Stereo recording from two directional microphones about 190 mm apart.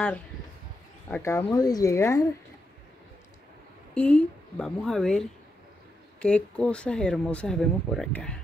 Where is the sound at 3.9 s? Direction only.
5° left (ahead or behind).